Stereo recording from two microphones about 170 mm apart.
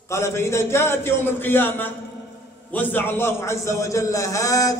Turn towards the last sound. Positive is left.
turn(degrees=20)  # may be behind; listen again after turning